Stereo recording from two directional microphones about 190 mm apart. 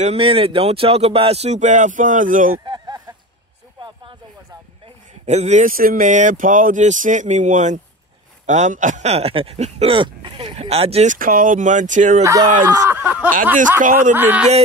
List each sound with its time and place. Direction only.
0.0 s speech: 30° right (ahead or behind)
2.6 s a sound: 25° right (ahead or behind)
5.2 s speech: 35° right (ahead or behind)
11.1 s speech: 45° right (ahead or behind)
12.2 s a man's voice: 15° right (ahead or behind)
13.6 s speech: 45° right (ahead or behind)
14.1 s a man's voice: 10° right (ahead or behind)